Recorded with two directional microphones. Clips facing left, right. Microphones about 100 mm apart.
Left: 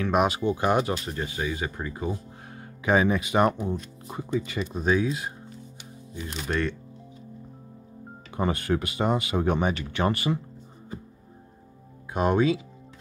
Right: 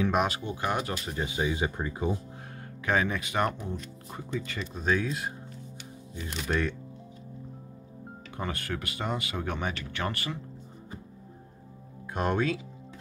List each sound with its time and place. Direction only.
0.5 s speech: 25° left (ahead or behind)
0.9 s speech: centre (ahead or behind)
1.2 s speech: 15° right (ahead or behind)
2.5 s speech: 10° left (ahead or behind); by 6.8 s 5° right (ahead or behind)
8.4 s speech: 20° left (ahead or behind)
12.1 s speech: 5° left (ahead or behind)